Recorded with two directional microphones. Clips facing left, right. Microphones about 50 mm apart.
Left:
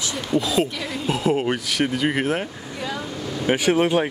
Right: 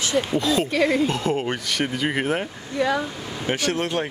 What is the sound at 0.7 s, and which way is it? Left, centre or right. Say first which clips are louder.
Speech: right 10 dB; right.